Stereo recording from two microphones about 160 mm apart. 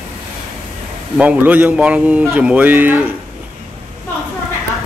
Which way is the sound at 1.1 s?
10° right (ahead or behind).